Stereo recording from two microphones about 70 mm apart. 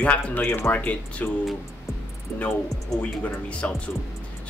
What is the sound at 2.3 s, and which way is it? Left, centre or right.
Speech, left.